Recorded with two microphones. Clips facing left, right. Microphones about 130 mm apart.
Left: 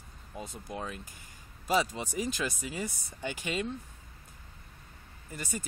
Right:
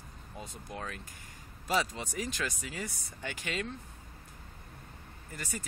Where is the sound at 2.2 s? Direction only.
10° left (ahead or behind).